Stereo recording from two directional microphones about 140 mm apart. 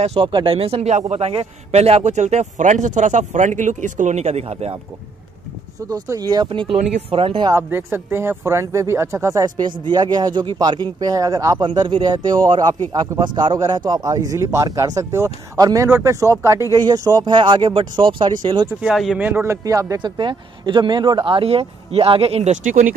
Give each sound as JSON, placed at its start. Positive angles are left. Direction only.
{"t": 0.0, "sound": "speech", "side_deg": -45}
{"t": 0.3, "sound": "speech", "side_deg": -35}
{"t": 5.9, "sound": "speech", "side_deg": -25}
{"t": 7.5, "sound": "speech", "side_deg": -15}
{"t": 18.7, "sound": "speech", "side_deg": -5}
{"t": 19.1, "sound": "speech", "side_deg": -15}